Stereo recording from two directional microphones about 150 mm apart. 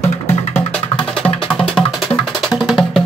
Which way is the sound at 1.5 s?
Centre (ahead or behind).